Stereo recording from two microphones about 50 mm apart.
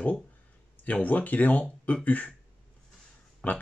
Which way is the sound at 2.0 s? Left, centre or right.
Left.